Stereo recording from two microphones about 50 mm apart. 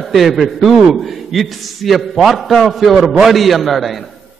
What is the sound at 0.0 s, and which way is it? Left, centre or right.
A man's voice, centre.